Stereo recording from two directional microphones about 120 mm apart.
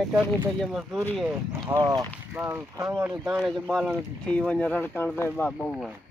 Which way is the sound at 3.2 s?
5° right (ahead or behind).